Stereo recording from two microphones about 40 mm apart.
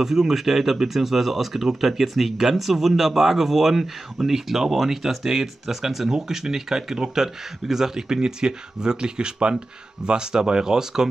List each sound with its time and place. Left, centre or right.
0.0 s speech: centre